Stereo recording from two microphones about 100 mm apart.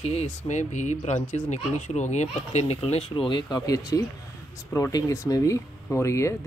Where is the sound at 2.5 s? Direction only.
90° left.